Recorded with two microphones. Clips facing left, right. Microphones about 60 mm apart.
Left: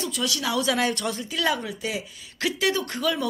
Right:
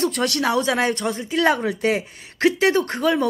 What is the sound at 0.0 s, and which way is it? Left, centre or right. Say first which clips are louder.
Speech: right 7 dB; right.